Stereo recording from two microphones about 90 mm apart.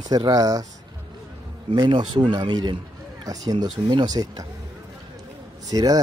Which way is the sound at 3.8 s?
55° right (ahead or behind).